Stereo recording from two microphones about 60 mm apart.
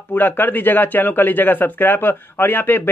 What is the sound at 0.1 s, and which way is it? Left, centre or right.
Speech, left.